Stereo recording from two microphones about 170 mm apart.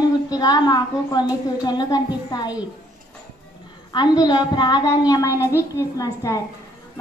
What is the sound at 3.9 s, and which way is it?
A woman's voice, 25° left (ahead or behind).